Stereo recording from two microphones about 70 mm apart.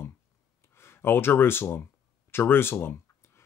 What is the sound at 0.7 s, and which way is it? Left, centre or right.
Speech, left.